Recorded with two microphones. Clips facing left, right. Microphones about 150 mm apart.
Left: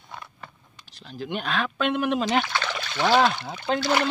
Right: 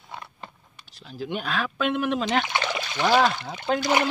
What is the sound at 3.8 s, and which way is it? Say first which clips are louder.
Speech: right 1 dB; 15° right (ahead or behind).